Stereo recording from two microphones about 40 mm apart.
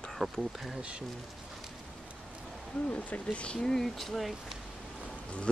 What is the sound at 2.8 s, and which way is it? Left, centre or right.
Speech, left.